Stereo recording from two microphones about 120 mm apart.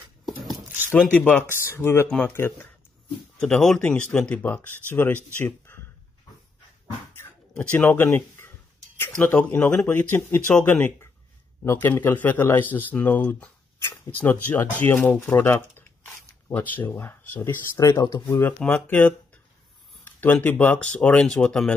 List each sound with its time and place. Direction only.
1.1 s speech: 15° left (ahead or behind)
2.0 s speech: 10° left (ahead or behind)
2.3 s speech: 20° left (ahead or behind)
3.3 s speech: 5° left (ahead or behind)
7.2 s a sound: 15° left (ahead or behind)
9.2 s speech: 15° left (ahead or behind)
17.7 s speech: 25° left (ahead or behind)
18.4 s speech: 10° left (ahead or behind)